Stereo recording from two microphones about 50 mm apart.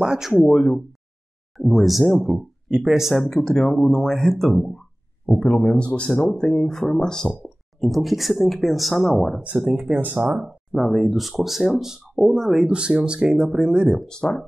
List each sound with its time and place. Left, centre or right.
0.0 s speech: centre
0.4 s speech: centre
1.6 s speech: centre
3.2 s speech: centre
5.5 s speech: left
7.4 s speech: centre
9.8 s speech: right
10.4 s speech: centre
14.0 s speech: centre